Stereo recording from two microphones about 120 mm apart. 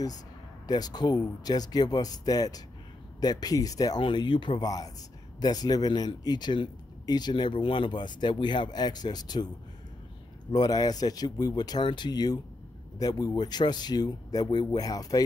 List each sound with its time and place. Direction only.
0.7 s speech: 35° left (ahead or behind)
4.0 s speech: 40° left (ahead or behind)
4.6 s speech: 30° left (ahead or behind)
10.5 s speech: 35° left (ahead or behind)